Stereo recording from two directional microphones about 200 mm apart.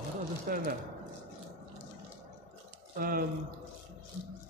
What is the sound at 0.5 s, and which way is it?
Speech, 45° right (ahead or behind).